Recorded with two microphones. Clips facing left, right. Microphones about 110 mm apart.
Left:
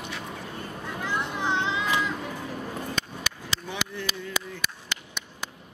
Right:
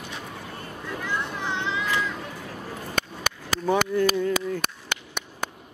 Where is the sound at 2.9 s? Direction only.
50° right (ahead or behind).